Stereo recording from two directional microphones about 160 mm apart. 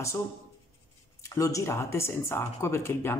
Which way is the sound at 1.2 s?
20° left (ahead or behind).